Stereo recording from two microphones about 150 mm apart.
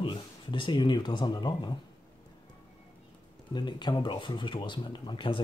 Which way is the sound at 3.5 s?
30° left (ahead or behind).